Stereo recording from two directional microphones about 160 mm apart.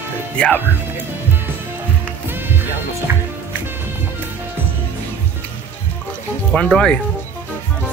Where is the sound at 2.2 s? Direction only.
15° right (ahead or behind).